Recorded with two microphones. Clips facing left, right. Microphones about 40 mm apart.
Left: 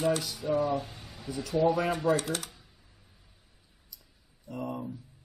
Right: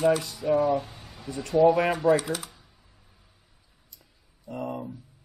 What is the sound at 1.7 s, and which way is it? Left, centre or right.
Speech, right.